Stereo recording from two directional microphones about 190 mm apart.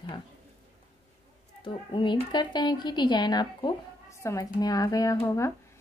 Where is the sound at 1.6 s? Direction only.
25° left (ahead or behind).